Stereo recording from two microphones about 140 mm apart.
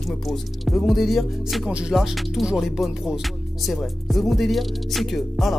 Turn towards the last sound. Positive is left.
turn(degrees=0)  # may be behind; listen again after turning